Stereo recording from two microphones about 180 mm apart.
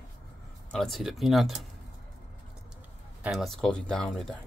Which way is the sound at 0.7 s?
Centre (ahead or behind).